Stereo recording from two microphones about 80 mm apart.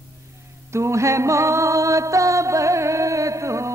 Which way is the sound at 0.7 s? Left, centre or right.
Right.